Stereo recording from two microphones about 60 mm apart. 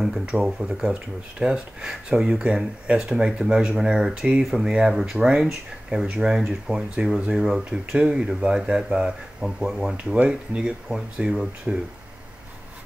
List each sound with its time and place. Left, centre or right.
0.0 s speech: centre
4.4 s speech: centre
4.6 s speech: centre
9.9 s speech: centre